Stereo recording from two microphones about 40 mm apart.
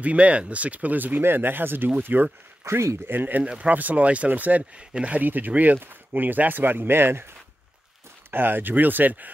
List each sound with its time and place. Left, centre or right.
0.0 s speech: right
1.2 s speech: right
2.7 s speech: right
3.5 s speech: right
8.3 s speech: right